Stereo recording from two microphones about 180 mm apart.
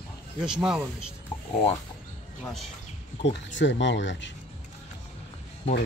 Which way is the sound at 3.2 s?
90° left.